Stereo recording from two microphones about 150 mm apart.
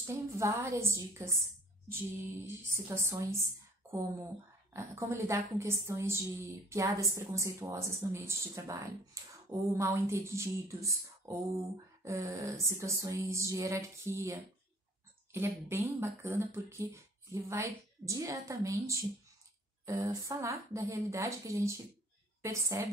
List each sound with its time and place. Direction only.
0.0 s a woman's voice: 15° right (ahead or behind)
2.4 s a woman's voice: 15° right (ahead or behind)
4.7 s a woman's voice: 20° right (ahead or behind)